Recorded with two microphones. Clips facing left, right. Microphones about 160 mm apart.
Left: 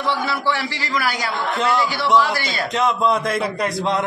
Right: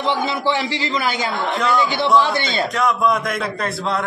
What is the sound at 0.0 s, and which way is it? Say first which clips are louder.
A man's voice: right 2 dB; 20° right (ahead or behind).